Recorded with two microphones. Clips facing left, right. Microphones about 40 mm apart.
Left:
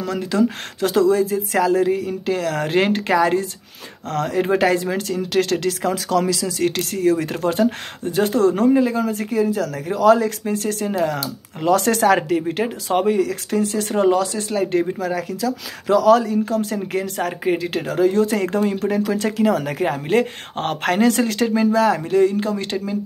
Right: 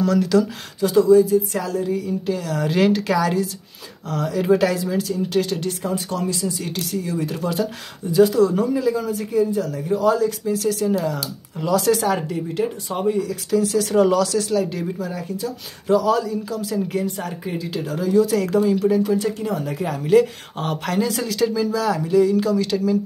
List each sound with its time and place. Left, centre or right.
0.0 s speech: left
0.7 s speech: left
4.1 s speech: left
4.4 s speech: left
10.5 s speech: left
13.6 s speech: left
13.9 s speech: left
14.6 s speech: left
15.0 s speech: left
19.8 s speech: left